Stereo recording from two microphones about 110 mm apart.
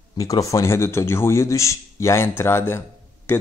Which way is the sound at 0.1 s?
30° left (ahead or behind).